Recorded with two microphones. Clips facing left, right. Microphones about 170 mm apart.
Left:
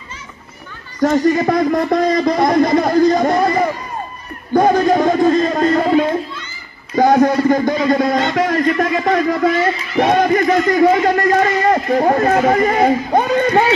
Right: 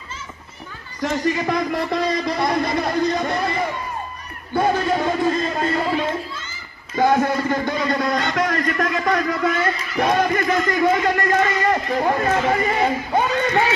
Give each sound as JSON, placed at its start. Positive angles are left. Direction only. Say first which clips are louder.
{"t": 1.0, "sound": "speech", "louder": "left 8 dB", "side_deg": 40}
{"t": 4.6, "sound": "a sound", "louder": "left 7 dB", "side_deg": 40}
{"t": 8.7, "sound": "speech", "louder": "left 5 dB", "side_deg": 35}